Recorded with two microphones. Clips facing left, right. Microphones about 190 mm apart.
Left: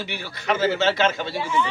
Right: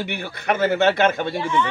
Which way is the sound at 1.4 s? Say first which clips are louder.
Right 1 dB; 5° left (ahead or behind).